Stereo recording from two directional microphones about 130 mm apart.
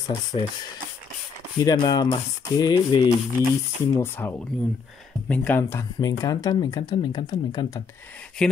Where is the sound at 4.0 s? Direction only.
15° left (ahead or behind).